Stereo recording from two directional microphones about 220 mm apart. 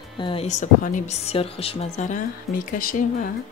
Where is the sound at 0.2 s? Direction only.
25° left (ahead or behind).